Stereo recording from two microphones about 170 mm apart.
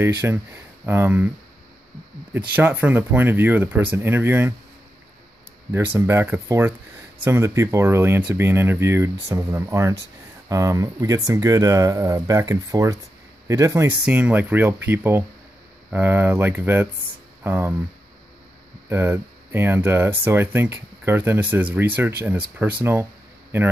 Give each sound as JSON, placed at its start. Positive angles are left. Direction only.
{"t": 0.2, "sound": "speech", "side_deg": -10}
{"t": 2.5, "sound": "speech", "side_deg": -10}
{"t": 5.9, "sound": "speech", "side_deg": -15}
{"t": 18.9, "sound": "speech", "side_deg": -15}